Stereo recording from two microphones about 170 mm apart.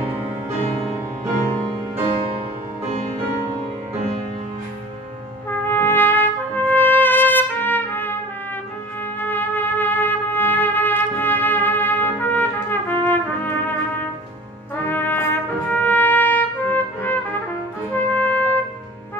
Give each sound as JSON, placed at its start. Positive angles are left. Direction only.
{"t": 5.5, "sound": "trumpet", "side_deg": 10}
{"t": 9.2, "sound": "music", "side_deg": 10}
{"t": 14.8, "sound": "trumpet", "side_deg": 10}
{"t": 17.9, "sound": "music", "side_deg": 10}